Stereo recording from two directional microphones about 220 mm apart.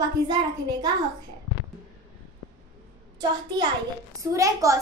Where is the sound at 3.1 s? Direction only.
20° right (ahead or behind).